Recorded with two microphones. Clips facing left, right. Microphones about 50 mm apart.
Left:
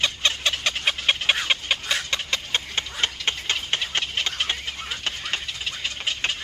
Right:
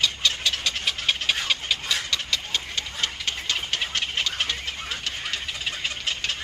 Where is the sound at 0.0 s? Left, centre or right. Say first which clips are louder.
Left 1 dB; left.